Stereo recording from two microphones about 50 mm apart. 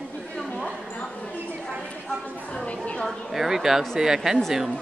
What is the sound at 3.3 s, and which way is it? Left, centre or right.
Speech, centre.